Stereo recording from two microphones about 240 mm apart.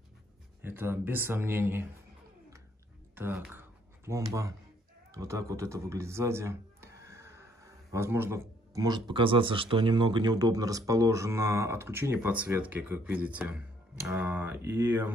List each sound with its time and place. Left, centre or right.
0.6 s speech: centre
3.2 s speech: centre